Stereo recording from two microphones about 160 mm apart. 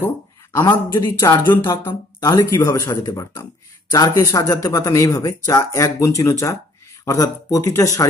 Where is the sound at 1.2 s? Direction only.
20° left (ahead or behind).